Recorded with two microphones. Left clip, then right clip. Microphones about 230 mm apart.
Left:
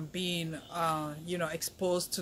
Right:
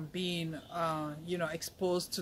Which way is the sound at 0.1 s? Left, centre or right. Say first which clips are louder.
Left 2 dB; centre.